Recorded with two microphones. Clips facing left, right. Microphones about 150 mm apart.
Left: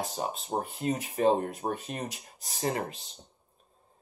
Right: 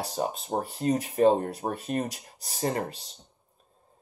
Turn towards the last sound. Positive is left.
turn(degrees=-40)  # may be behind; listen again after turning